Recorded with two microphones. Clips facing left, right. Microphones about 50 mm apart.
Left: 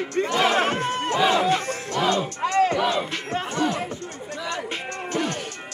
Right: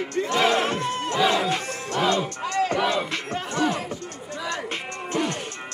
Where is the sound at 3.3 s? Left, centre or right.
Left.